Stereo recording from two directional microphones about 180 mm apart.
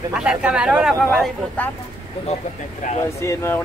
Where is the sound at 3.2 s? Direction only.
15° left (ahead or behind).